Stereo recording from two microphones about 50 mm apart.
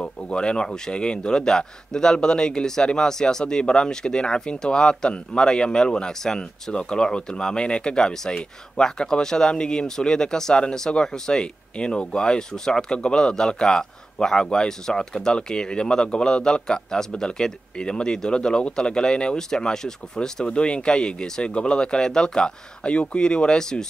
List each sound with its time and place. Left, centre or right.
0.0 s speech: centre